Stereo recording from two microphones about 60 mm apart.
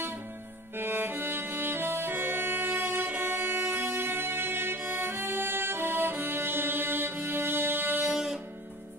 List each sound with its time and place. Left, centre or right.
0.7 s music: right
8.1 s music: centre